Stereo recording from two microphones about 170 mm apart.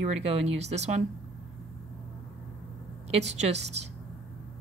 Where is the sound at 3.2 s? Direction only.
40° right (ahead or behind).